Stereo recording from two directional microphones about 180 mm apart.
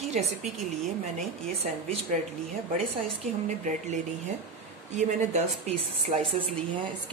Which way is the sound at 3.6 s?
40° right (ahead or behind).